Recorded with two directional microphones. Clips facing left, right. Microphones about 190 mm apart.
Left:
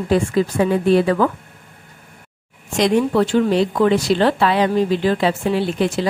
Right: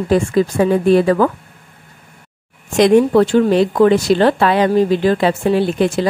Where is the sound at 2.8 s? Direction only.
50° right (ahead or behind).